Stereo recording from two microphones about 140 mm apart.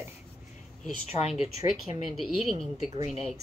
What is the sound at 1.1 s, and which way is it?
Speech, 50° left (ahead or behind).